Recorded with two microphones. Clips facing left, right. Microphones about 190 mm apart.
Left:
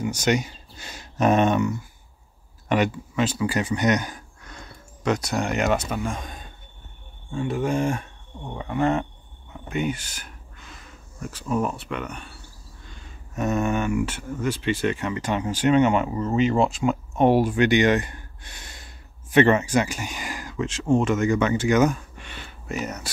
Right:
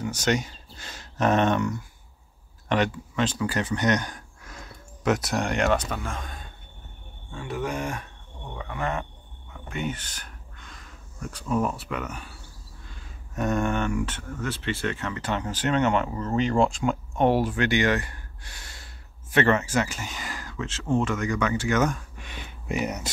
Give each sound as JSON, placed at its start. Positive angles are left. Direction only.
{"t": 0.0, "sound": "speech", "side_deg": 10}
{"t": 4.4, "sound": "speech", "side_deg": -5}
{"t": 7.3, "sound": "speech", "side_deg": 25}
{"t": 22.1, "sound": "a sound", "side_deg": -10}